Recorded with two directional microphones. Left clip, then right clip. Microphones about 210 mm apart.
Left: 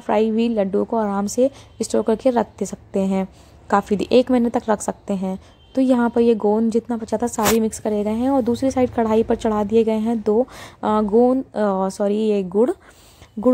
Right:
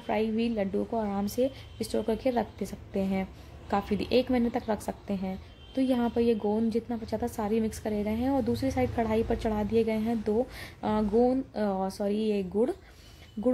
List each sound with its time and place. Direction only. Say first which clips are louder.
0.0 s a woman's voice: left 11 dB; 30° left (ahead or behind)